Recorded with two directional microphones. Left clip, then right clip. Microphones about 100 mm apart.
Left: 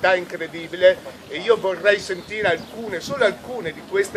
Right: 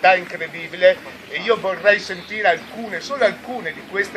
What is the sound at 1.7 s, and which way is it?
A man's voice, 75° left (ahead or behind).